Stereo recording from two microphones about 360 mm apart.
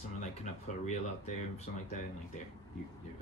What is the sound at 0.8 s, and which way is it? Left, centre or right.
Speech, centre.